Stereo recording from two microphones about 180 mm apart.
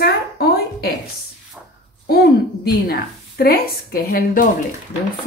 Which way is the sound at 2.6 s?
60° left (ahead or behind).